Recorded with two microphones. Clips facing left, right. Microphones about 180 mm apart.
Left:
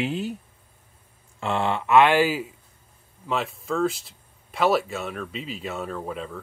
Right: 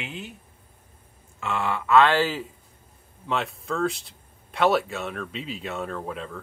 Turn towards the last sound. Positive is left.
turn(degrees=5)  # may be behind; listen again after turning